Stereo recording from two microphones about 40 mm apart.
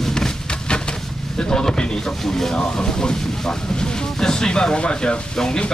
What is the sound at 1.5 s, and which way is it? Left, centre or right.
Speech, centre.